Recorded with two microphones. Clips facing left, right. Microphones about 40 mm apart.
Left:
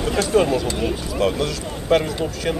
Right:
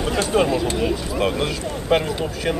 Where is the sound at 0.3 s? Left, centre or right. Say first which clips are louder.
Left 1 dB; centre.